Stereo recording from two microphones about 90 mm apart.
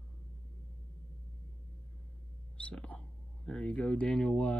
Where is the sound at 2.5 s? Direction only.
10° left (ahead or behind).